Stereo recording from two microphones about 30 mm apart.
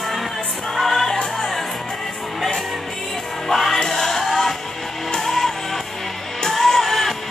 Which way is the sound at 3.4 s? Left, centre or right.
Centre.